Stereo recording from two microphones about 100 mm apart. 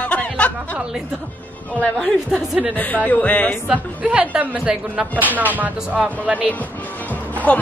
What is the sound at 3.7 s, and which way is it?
A woman's voice, 10° right (ahead or behind).